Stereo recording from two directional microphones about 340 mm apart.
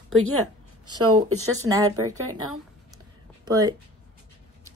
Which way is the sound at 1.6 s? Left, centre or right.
Centre.